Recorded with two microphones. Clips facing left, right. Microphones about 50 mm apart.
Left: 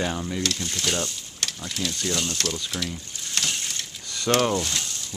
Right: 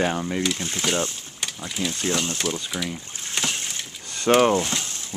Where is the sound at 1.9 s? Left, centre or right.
Right.